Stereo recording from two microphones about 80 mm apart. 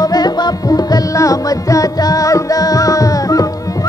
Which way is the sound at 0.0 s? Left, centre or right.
Left.